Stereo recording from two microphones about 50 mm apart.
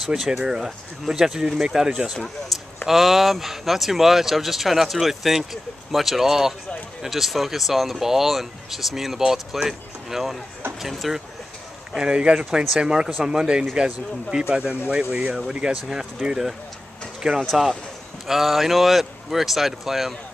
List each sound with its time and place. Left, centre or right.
0.0 s speech: centre
2.5 s a sound: centre
2.9 s speech: centre
11.9 s speech: centre
12.4 s speech: centre